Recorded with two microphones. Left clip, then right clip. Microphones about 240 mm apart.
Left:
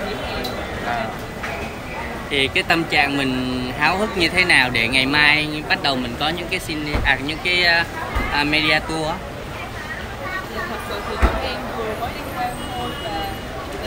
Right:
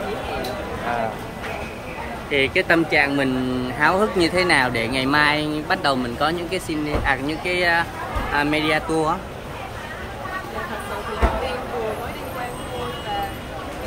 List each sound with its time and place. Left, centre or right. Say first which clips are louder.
2.3 s speech: even; centre